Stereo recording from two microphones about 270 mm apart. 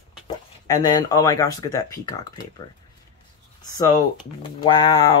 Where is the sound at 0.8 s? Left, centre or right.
Centre.